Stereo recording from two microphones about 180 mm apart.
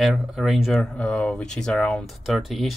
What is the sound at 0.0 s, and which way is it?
Speech, 5° right (ahead or behind).